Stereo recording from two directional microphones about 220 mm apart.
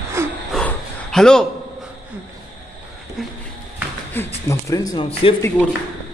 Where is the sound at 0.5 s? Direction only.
Centre (ahead or behind).